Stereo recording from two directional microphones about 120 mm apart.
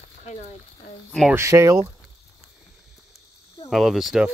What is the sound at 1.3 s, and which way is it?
Speech, 25° right (ahead or behind).